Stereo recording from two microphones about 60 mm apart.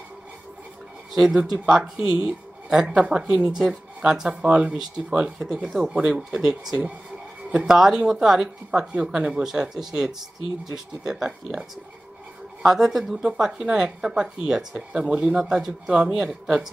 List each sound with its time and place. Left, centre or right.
1.1 s speech: centre
12.6 s speech: centre